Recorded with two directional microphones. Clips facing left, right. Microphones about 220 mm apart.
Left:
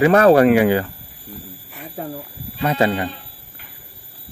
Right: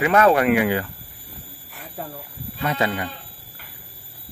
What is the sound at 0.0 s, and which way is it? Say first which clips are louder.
Speech: left 5 dB; 35° left (ahead or behind).